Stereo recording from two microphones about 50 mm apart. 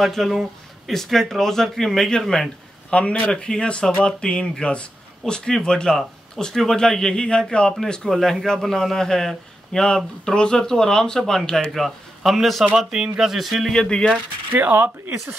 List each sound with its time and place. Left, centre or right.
0.0 s speech: centre
2.9 s a man's voice: left
8.1 s a man's voice: centre
13.7 s a man's voice: centre
14.5 s speech: right